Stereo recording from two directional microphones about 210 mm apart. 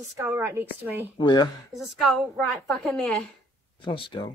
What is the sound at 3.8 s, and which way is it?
Speech, 25° left (ahead or behind).